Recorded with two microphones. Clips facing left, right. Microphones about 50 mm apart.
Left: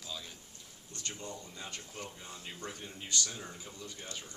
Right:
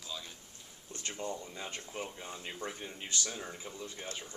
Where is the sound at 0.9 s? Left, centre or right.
Right.